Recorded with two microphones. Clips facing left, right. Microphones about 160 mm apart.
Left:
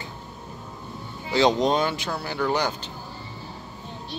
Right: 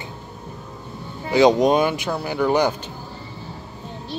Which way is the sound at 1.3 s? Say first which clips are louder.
Right 5 dB; 15° right (ahead or behind).